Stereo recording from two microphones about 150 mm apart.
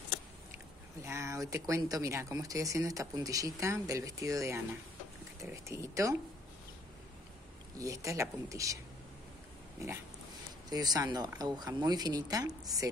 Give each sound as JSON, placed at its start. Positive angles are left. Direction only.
{"t": 1.0, "sound": "speech", "side_deg": -20}
{"t": 7.7, "sound": "speech", "side_deg": -20}
{"t": 10.7, "sound": "speech", "side_deg": -25}